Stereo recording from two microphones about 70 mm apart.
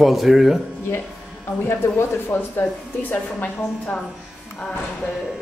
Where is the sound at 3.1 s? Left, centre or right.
Left.